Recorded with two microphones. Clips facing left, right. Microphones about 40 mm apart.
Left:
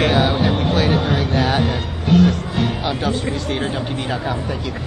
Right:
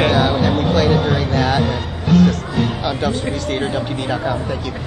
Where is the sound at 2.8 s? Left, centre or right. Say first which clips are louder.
Right 1 dB; centre.